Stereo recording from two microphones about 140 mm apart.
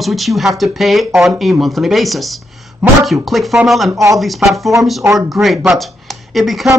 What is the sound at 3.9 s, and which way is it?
Speech, 20° right (ahead or behind).